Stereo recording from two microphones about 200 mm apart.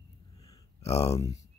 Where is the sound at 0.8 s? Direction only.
30° left (ahead or behind).